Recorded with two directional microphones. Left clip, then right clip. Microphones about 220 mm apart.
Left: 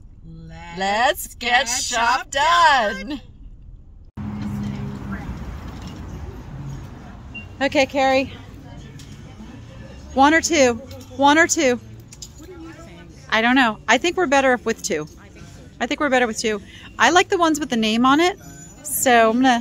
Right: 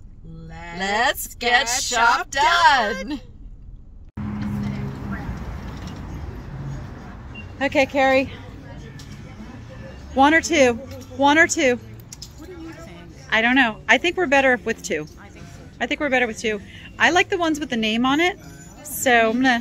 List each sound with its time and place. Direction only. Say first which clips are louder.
0.7 s speech: left 2 dB; 15° left (ahead or behind)
7.5 s speech: left 1 dB; 20° left (ahead or behind)
10.1 s speech: left 1 dB; 10° left (ahead or behind)
13.3 s a woman's voice: left 1 dB; 20° left (ahead or behind)